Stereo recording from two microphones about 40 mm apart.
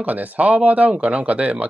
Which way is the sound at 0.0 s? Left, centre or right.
Right.